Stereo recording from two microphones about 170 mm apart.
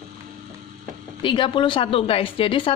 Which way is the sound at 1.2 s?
30° left (ahead or behind).